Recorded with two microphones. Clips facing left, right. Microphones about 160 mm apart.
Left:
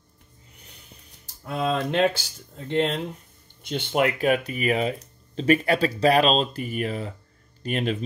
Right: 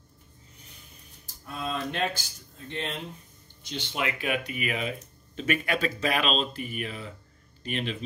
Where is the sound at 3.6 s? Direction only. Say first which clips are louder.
Left 9 dB; 55° left (ahead or behind).